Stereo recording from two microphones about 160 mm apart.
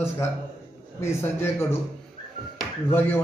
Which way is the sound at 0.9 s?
15° left (ahead or behind).